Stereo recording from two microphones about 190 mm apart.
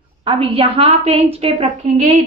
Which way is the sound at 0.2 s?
30° right (ahead or behind).